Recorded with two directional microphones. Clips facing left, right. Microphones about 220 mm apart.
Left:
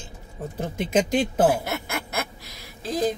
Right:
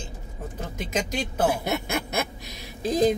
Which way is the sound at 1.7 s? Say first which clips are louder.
Right 3 dB; 20° right (ahead or behind).